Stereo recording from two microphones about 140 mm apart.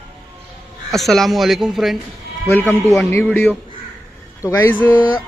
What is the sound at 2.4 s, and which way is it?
Speech, 15° left (ahead or behind).